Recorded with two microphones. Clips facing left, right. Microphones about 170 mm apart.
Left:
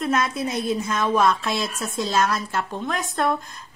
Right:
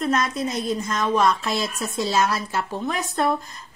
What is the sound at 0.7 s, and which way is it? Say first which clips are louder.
A woman's voice: even; 10° left (ahead or behind).